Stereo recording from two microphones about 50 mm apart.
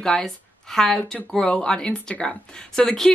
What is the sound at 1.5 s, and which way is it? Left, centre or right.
A woman's voice, centre.